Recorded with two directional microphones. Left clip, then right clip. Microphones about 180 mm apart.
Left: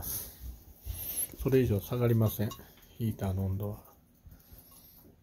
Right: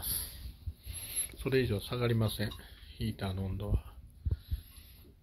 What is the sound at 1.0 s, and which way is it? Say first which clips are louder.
Speech: left 3 dB; 20° left (ahead or behind).